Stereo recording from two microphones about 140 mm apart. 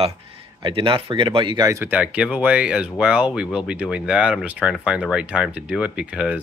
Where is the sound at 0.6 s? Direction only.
40° right (ahead or behind).